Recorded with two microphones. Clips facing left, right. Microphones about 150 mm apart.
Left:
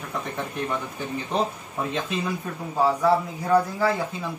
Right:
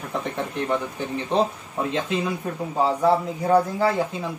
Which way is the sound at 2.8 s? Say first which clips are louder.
Even; 25° right (ahead or behind).